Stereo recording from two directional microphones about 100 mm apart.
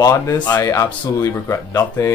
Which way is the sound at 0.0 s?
35° left (ahead or behind).